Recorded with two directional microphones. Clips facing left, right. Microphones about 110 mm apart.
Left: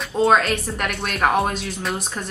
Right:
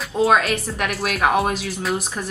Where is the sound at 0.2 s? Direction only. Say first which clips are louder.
Even; 5° right (ahead or behind).